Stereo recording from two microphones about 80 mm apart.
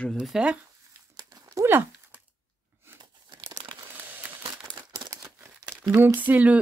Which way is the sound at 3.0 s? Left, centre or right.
Right.